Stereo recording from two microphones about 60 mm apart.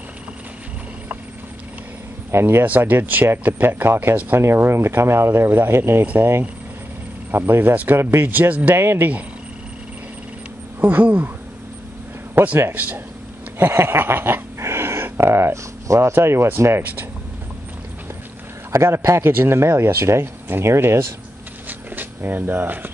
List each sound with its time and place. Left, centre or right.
2.3 s speech: right
2.6 s speech: right
3.6 s speech: right
6.0 s speech: right
10.8 s speech: right
12.4 s a man's voice: right
13.6 s speech: right
18.7 s speech: right
21.6 s a sound: right